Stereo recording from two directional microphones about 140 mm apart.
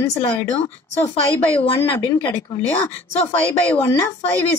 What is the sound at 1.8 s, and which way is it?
Speech, 15° left (ahead or behind).